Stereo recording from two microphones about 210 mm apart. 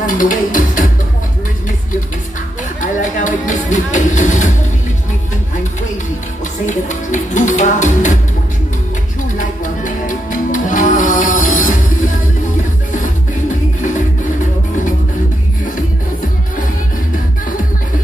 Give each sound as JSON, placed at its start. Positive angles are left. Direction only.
{"t": 0.0, "sound": "music", "side_deg": 40}
{"t": 2.8, "sound": "music", "side_deg": 35}
{"t": 6.6, "sound": "music", "side_deg": 35}
{"t": 9.4, "sound": "music", "side_deg": 40}